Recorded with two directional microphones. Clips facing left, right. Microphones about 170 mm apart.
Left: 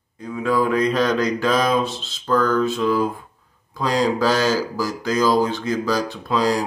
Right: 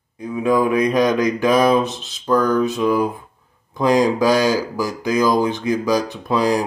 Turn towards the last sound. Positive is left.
turn(degrees=-15)  # may be behind; listen again after turning